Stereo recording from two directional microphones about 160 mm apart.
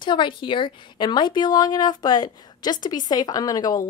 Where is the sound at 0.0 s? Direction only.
30° left (ahead or behind).